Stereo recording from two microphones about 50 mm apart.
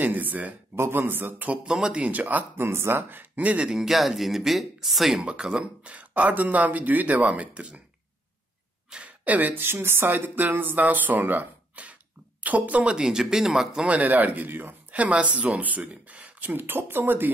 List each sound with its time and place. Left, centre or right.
0.0 s speech: right
0.7 s speech: right
1.7 s speech: centre; by 2.4 s right
2.5 s speech: right
3.0 s speech: right
3.6 s speech: centre
5.2 s speech: right
9.0 s speech: right
11.7 s throat clearing: right
12.8 s speech: centre
13.9 s speech: right